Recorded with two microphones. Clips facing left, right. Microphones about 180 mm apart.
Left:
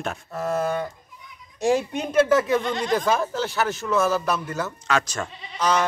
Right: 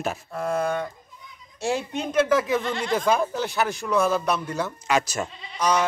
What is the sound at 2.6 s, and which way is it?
Speech, 20° left (ahead or behind).